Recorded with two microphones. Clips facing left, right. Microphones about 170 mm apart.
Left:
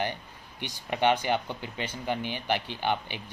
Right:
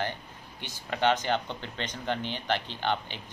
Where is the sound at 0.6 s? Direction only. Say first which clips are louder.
Left 2 dB; 15° left (ahead or behind).